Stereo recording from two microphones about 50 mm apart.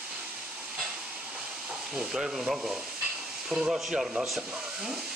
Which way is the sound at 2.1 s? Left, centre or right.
Centre.